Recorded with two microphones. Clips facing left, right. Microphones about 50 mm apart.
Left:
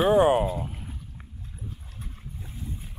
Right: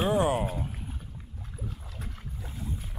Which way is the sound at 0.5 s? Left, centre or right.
Left.